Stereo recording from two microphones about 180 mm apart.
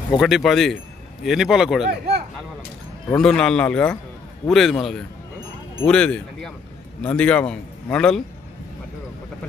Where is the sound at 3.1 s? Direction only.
5° left (ahead or behind).